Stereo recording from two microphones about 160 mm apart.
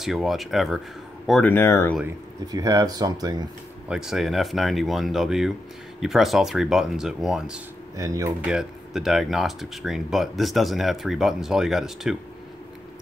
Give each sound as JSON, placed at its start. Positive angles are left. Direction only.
{"t": 0.0, "sound": "speech", "side_deg": 0}
{"t": 1.5, "sound": "speech", "side_deg": 15}
{"t": 2.0, "sound": "speech", "side_deg": -20}
{"t": 3.9, "sound": "speech", "side_deg": 0}
{"t": 7.9, "sound": "speech", "side_deg": -20}
{"t": 8.5, "sound": "speech", "side_deg": -5}